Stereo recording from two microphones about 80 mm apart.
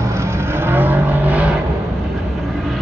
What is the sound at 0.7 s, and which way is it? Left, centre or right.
Vehicle, right.